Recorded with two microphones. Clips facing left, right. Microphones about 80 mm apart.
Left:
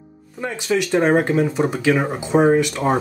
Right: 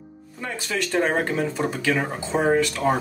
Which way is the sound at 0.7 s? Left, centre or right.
Left.